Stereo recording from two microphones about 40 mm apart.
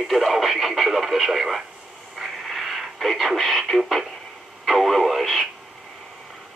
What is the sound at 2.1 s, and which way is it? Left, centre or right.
Radio, centre.